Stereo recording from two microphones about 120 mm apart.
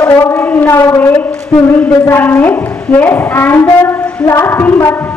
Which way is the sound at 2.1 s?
15° left (ahead or behind).